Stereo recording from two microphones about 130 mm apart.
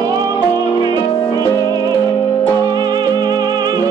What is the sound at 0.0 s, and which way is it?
Music, 30° right (ahead or behind).